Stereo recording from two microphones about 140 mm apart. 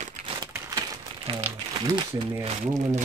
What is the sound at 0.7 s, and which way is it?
Crumpling, 25° right (ahead or behind).